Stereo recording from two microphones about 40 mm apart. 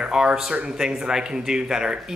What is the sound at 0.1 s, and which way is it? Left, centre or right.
Speech, centre.